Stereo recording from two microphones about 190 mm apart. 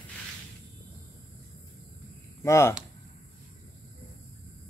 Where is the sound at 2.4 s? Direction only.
15° left (ahead or behind).